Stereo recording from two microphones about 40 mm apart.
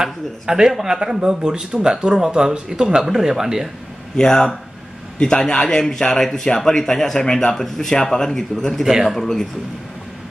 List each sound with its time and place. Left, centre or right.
0.0 s speech: centre
4.2 s speech: centre
8.8 s speech: centre
9.1 s speech: centre